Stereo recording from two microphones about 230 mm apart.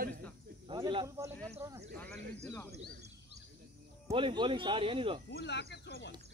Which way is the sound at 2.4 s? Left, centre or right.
Centre.